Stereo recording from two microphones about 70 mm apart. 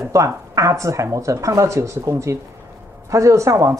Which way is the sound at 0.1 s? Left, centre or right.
Right.